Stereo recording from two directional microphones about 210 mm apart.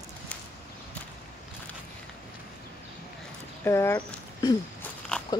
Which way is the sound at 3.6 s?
10° left (ahead or behind).